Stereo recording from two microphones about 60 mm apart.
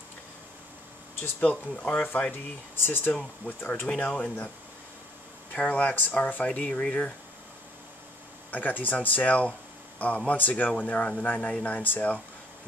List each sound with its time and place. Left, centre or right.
1.4 s speech: left
2.3 s speech: left
3.1 s speech: left
5.5 s speech: left
8.5 s speech: left